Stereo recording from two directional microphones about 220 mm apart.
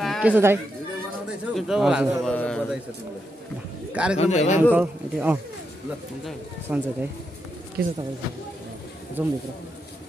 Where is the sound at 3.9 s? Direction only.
5° right (ahead or behind).